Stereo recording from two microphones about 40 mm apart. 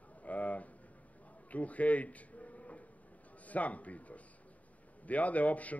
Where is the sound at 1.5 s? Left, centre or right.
Left.